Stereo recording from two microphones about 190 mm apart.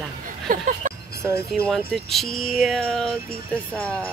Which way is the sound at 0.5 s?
45° right (ahead or behind).